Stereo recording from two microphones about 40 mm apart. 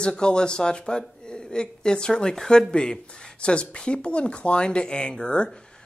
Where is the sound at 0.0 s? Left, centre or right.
Left.